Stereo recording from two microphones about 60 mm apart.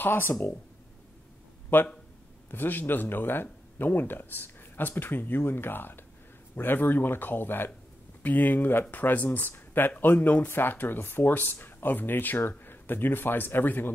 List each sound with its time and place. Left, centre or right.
0.0 s speech: left
1.7 s speech: left